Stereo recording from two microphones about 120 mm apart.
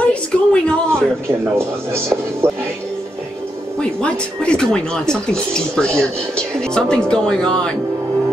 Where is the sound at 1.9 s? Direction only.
20° right (ahead or behind).